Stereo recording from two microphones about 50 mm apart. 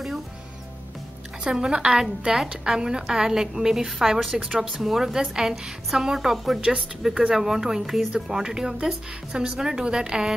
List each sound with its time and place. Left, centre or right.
1.4 s a woman's voice: centre
4.4 s a woman's voice: centre